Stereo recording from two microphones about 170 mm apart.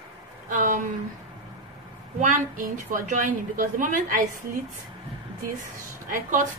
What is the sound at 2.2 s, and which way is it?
A woman's voice, 50° right (ahead or behind).